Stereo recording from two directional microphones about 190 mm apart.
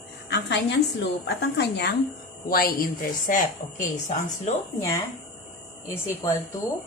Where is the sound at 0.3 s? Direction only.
65° left (ahead or behind).